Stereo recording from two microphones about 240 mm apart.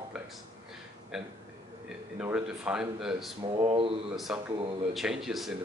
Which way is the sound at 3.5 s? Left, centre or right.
Right.